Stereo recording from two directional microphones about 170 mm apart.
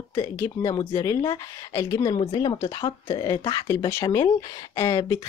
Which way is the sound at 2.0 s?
35° left (ahead or behind).